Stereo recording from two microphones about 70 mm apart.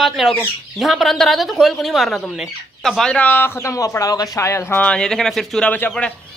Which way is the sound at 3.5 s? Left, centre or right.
Left.